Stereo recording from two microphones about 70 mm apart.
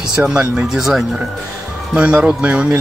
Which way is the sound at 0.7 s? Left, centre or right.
Centre.